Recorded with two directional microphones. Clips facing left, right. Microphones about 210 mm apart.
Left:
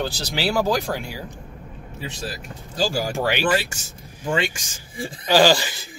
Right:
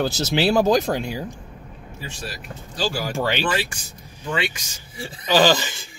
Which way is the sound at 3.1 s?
15° left (ahead or behind).